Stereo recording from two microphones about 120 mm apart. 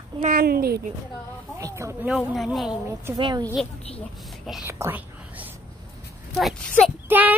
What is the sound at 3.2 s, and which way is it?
Speech, 40° right (ahead or behind).